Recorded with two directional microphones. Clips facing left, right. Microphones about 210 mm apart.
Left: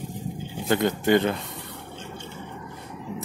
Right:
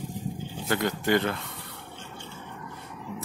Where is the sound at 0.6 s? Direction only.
20° left (ahead or behind).